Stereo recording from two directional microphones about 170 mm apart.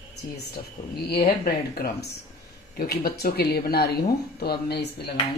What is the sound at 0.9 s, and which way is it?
Speech, 65° left (ahead or behind).